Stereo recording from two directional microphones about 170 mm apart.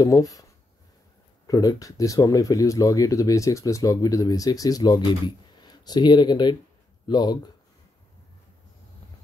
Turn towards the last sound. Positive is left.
turn(degrees=25)  # may be behind; listen again after turning